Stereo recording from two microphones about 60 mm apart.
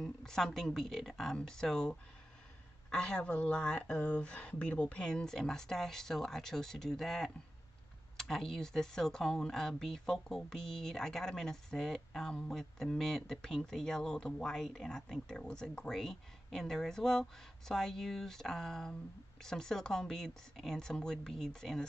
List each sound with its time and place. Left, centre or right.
0.0 s speech: centre